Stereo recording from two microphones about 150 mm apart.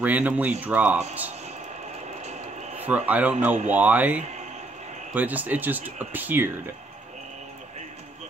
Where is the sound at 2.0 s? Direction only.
50° right (ahead or behind).